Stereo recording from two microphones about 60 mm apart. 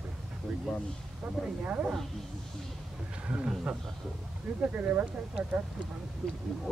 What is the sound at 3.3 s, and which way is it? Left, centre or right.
Speech, right.